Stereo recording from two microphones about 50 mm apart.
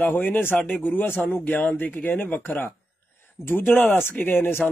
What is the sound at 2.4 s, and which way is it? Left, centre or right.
Speech, left.